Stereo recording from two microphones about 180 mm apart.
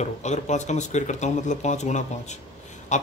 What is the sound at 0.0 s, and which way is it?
A man's voice, 40° left (ahead or behind).